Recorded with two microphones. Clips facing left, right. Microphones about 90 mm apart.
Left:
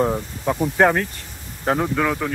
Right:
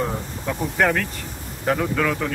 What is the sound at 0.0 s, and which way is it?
Speech, 30° left (ahead or behind).